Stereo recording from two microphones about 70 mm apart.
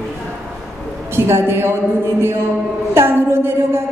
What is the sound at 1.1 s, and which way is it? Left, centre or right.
Speech, right.